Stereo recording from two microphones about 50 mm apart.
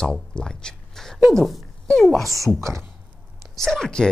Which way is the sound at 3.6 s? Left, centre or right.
Centre.